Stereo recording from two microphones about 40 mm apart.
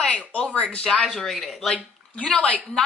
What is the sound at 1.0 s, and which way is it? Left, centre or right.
Speech, centre.